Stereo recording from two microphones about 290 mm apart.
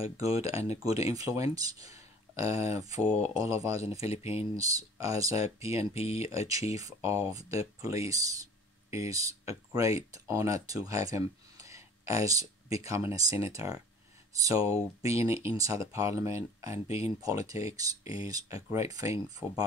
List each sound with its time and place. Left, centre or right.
0.2 s speech: centre
4.0 s speech: left
4.6 s speech: centre
5.9 s speech: left
6.7 s speech: centre